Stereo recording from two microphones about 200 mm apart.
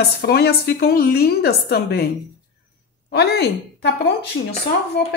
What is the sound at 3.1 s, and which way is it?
Speech, 55° left (ahead or behind).